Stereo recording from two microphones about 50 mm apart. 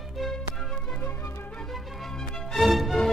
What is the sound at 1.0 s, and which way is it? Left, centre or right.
Music, left.